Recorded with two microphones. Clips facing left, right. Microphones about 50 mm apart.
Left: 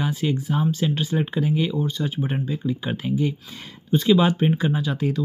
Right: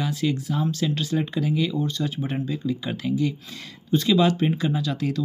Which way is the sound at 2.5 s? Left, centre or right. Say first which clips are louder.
Left 1 dB; left.